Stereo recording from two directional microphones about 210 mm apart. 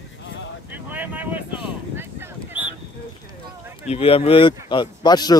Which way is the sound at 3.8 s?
30° left (ahead or behind).